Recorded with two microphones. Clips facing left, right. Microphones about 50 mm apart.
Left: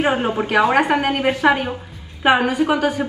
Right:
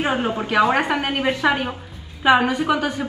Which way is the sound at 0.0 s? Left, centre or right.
Left.